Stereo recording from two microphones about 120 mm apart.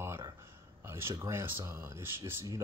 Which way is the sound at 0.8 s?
20° right (ahead or behind).